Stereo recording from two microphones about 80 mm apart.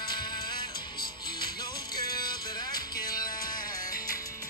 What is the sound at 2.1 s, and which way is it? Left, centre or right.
Music, left.